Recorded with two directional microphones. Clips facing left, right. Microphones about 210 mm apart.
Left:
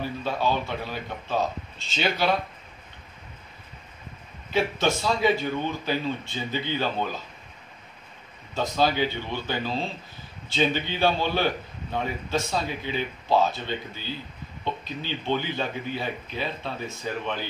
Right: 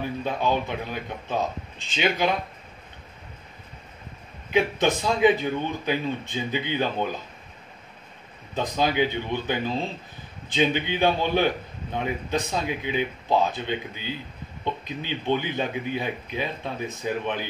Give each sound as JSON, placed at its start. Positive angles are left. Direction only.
{"t": 0.2, "sound": "a man's voice", "side_deg": -15}
{"t": 4.5, "sound": "a man's voice", "side_deg": -15}
{"t": 8.5, "sound": "a man's voice", "side_deg": -15}